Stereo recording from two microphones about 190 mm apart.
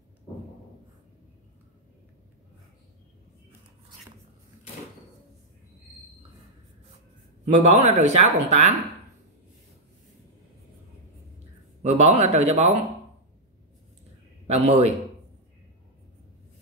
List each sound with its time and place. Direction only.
7.4 s speech: 35° right (ahead or behind)
11.8 s speech: 35° right (ahead or behind)
14.5 s speech: 35° right (ahead or behind)